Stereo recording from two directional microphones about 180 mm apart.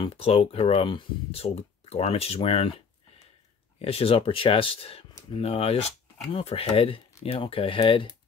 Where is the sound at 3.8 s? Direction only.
30° left (ahead or behind).